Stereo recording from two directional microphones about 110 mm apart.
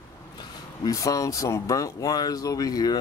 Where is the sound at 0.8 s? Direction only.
30° left (ahead or behind).